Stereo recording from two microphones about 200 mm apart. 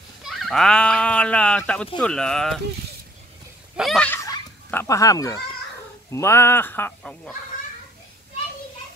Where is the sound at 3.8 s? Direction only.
Centre (ahead or behind).